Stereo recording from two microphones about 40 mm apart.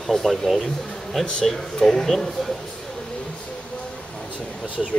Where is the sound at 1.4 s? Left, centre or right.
Centre.